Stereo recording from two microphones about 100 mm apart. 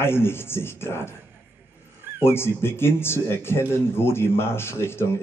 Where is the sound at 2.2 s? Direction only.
25° left (ahead or behind).